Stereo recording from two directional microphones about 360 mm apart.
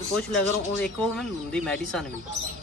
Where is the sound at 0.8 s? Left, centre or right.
Centre.